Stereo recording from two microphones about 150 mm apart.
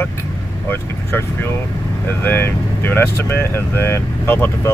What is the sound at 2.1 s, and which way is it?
Speech, 15° left (ahead or behind).